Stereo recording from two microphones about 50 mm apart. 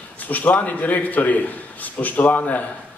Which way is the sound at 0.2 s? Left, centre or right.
Left.